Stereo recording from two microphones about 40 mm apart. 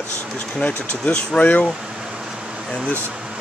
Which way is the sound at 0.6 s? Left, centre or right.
Left.